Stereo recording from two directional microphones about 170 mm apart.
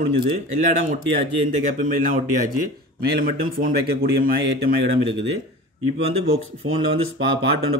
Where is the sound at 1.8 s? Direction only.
55° right (ahead or behind).